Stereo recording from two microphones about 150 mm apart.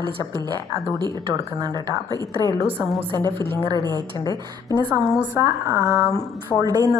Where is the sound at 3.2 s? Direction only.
15° left (ahead or behind).